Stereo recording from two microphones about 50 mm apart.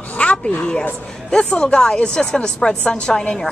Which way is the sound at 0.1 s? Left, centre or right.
Left.